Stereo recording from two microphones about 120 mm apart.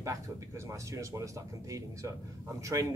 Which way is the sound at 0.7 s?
25° right (ahead or behind).